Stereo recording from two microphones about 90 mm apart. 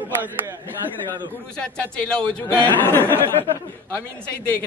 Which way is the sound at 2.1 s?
10° left (ahead or behind).